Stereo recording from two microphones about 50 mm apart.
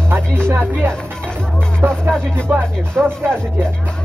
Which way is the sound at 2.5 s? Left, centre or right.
Right.